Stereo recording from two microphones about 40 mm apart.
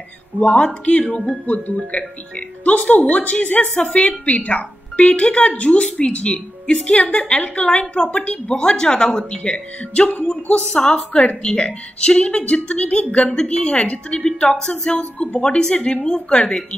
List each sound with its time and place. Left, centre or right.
0.4 s a woman's voice: left
2.0 s a woman's voice: left
8.5 s a woman's voice: centre
9.5 s a woman's voice: left
10.7 s a woman's voice: centre